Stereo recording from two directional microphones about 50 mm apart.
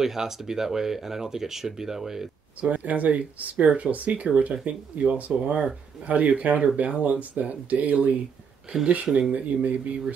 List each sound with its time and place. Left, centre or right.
0.0 s speech: centre
2.7 s speech: right